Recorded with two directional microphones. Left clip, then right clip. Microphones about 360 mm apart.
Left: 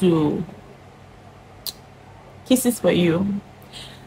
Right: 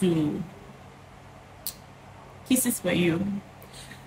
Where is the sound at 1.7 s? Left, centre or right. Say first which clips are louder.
Left 9 dB; centre.